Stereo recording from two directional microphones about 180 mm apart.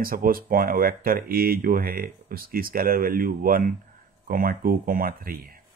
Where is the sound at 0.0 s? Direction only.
55° right (ahead or behind).